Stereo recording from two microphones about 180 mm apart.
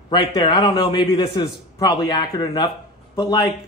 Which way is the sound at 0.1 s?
25° left (ahead or behind).